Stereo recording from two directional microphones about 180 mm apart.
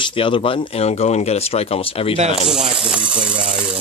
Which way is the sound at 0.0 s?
30° left (ahead or behind).